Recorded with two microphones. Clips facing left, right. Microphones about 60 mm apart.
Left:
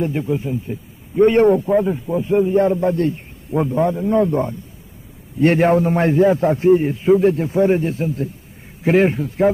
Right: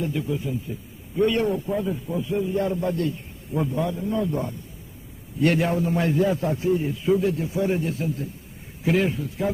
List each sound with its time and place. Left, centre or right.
0.0 s a man's voice: left